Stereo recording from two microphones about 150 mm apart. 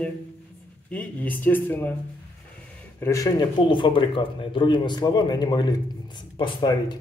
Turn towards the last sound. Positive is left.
turn(degrees=25)  # may be behind; listen again after turning